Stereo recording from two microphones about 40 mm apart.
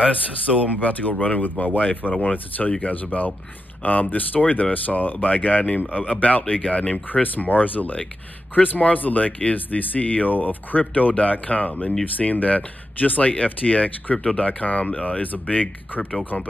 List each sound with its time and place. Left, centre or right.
0.7 s speech: left
6.4 s speech: left
7.1 s speech: left
14.1 s speech: left
14.4 s speech: left
16.0 s speech: centre